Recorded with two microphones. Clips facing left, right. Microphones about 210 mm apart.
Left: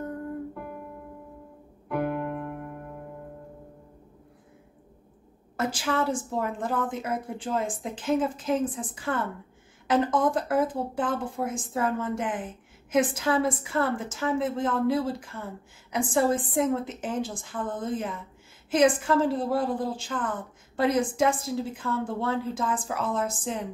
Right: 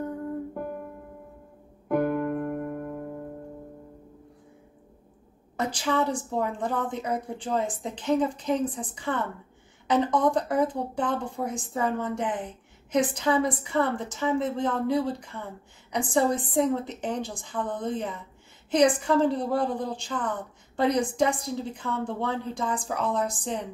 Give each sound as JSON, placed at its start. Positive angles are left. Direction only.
{"t": 1.9, "sound": "music", "side_deg": -45}
{"t": 5.6, "sound": "speech", "side_deg": 5}